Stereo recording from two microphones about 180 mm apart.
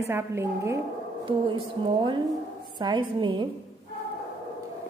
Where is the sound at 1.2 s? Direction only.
30° right (ahead or behind).